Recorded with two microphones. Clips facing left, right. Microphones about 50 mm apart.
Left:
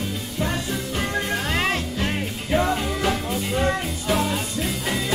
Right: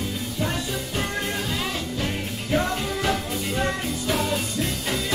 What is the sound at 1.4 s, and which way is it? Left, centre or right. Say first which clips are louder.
Music: left 5 dB; left.